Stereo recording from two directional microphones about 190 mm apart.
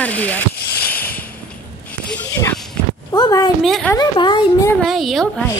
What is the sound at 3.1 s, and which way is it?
Speech, 20° left (ahead or behind).